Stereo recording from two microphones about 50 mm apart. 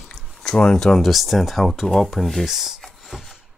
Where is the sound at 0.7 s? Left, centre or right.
Centre.